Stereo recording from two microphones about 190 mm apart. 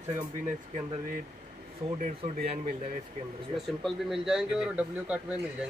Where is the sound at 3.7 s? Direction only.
Centre (ahead or behind).